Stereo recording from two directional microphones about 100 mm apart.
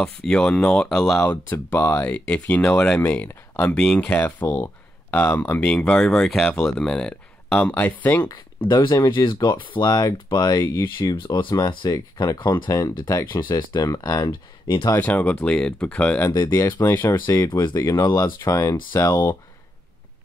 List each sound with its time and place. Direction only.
0.0 s speech: 5° left (ahead or behind)
1.2 s speech: 20° left (ahead or behind)
8.6 s speech: 50° left (ahead or behind); by 10.9 s 35° left (ahead or behind)
11.2 s speech: 55° left (ahead or behind)
11.5 s speech: 40° left (ahead or behind)
13.1 s speech: 20° left (ahead or behind)
13.4 s speech: 55° left (ahead or behind)
13.7 s speech: 35° left (ahead or behind)
14.2 s speech: 55° left (ahead or behind)
15.0 s speech: 15° left (ahead or behind)
17.9 s speech: 35° left (ahead or behind)